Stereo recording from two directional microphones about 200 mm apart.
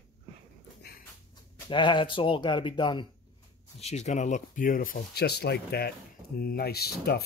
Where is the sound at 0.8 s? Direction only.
50° left (ahead or behind).